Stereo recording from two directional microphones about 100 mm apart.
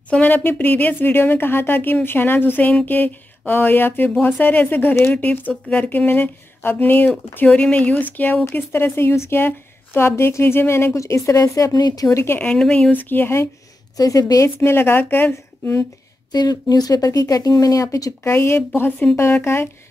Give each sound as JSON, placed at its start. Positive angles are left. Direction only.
{"t": 0.1, "sound": "a woman's voice", "side_deg": 15}
{"t": 12.4, "sound": "speech", "side_deg": 10}
{"t": 12.9, "sound": "a woman's voice", "side_deg": 20}
{"t": 13.9, "sound": "a woman's voice", "side_deg": 35}
{"t": 16.3, "sound": "a woman's voice", "side_deg": 40}